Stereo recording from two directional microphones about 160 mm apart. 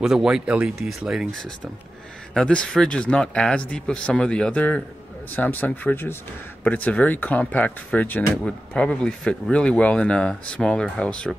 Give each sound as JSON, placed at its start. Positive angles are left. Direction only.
{"t": 0.0, "sound": "speech", "side_deg": -5}